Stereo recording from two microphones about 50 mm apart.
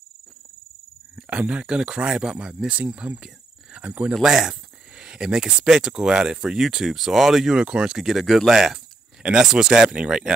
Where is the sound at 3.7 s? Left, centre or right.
Right.